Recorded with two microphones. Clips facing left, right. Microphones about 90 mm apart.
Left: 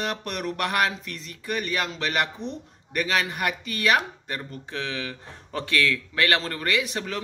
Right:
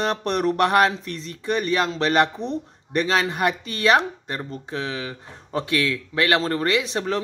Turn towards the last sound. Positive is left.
turn(degrees=-25)  # may be behind; listen again after turning